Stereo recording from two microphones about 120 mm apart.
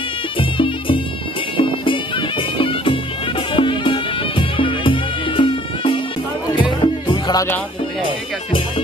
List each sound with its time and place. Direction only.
0.4 s music: 45° left (ahead or behind)
6.8 s music: 35° left (ahead or behind)